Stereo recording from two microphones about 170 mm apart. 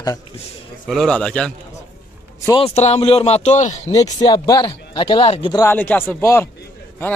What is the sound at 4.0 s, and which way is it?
Speech, 25° left (ahead or behind).